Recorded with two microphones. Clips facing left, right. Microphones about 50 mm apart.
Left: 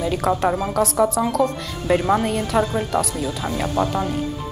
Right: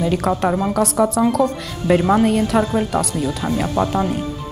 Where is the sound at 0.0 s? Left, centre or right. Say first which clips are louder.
Right 1 dB; centre.